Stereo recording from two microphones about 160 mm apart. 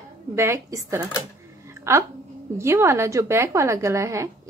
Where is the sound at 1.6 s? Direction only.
15° right (ahead or behind).